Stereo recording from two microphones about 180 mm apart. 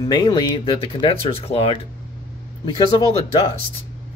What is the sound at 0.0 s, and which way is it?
Speech, 25° left (ahead or behind).